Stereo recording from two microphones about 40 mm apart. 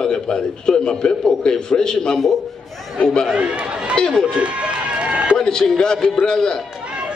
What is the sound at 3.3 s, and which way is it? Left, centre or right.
Speech, right.